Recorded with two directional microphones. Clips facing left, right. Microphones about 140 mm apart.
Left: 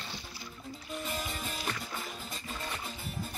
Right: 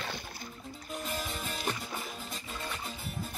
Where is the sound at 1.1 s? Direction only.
Centre (ahead or behind).